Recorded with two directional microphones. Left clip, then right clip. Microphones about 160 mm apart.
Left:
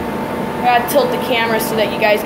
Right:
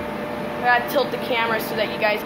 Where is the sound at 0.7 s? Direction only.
10° left (ahead or behind).